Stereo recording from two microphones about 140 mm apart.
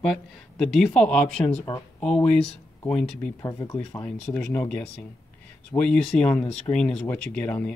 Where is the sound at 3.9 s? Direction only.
5° left (ahead or behind).